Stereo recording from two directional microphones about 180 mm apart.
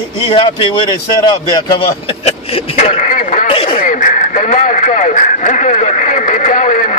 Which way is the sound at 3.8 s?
45° left (ahead or behind).